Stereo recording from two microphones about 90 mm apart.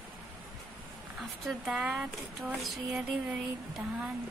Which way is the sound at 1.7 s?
10° right (ahead or behind).